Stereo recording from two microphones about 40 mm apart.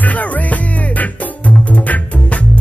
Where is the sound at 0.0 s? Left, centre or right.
Left.